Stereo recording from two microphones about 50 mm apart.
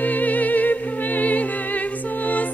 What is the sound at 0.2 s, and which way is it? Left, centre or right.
Music, left.